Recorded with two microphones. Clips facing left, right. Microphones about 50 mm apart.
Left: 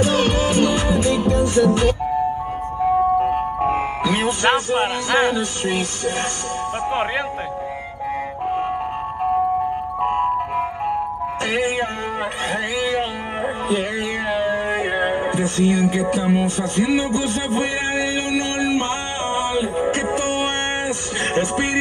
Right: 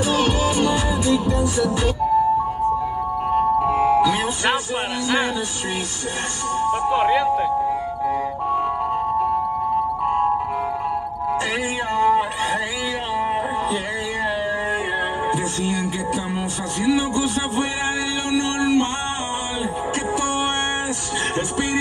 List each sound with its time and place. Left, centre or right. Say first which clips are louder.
0.0 s music: left 2 dB; left
3.2 s music: right 1 dB; left
6.9 s speech: right 4 dB; left
14.7 s music: left 2 dB; left
18.3 s a sound: right 4 dB; left